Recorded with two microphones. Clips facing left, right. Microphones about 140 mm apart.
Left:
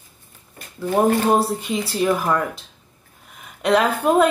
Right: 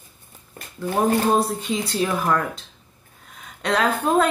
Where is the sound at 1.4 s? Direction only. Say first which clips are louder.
Left 1 dB; centre (ahead or behind).